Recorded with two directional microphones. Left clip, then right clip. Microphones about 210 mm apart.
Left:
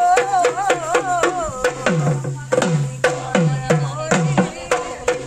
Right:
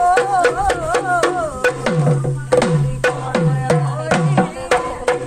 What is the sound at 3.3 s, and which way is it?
Music, 45° right (ahead or behind).